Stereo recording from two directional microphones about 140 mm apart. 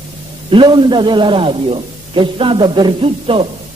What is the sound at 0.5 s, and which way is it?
A man's voice, 35° right (ahead or behind).